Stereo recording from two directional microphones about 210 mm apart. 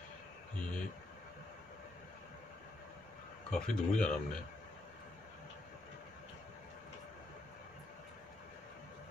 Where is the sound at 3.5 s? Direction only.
5° left (ahead or behind).